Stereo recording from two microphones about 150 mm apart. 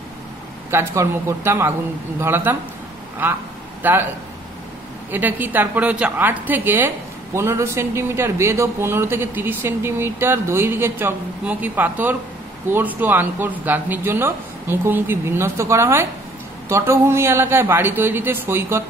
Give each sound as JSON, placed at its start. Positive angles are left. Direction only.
{"t": 0.7, "sound": "speech", "side_deg": -20}
{"t": 5.1, "sound": "speech", "side_deg": -15}